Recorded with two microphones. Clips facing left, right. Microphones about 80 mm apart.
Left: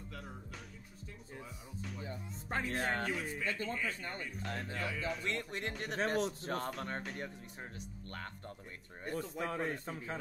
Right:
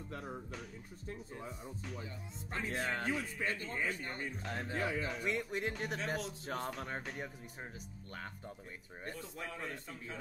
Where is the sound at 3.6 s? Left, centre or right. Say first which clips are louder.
Even; right.